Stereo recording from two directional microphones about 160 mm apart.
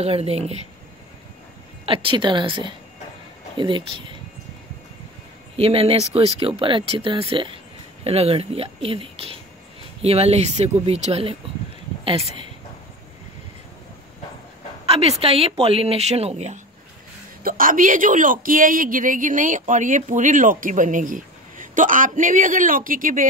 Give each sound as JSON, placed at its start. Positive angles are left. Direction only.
{"t": 0.0, "sound": "speech", "side_deg": -40}
{"t": 1.9, "sound": "speech", "side_deg": -30}
{"t": 5.6, "sound": "speech", "side_deg": -35}
{"t": 14.9, "sound": "speech", "side_deg": -40}
{"t": 17.4, "sound": "a man's voice", "side_deg": -60}